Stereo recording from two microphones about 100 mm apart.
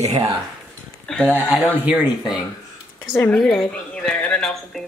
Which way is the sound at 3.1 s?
20° left (ahead or behind).